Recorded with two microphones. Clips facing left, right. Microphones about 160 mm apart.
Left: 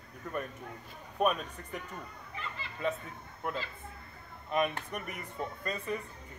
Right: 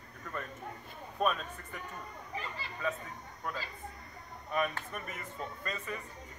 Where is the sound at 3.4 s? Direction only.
20° left (ahead or behind).